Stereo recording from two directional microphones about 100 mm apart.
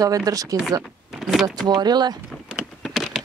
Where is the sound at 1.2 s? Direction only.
Centre (ahead or behind).